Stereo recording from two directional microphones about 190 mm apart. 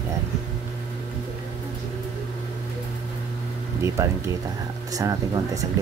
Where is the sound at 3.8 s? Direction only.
15° right (ahead or behind).